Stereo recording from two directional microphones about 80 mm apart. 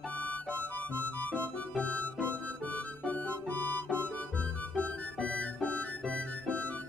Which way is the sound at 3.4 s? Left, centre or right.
Left.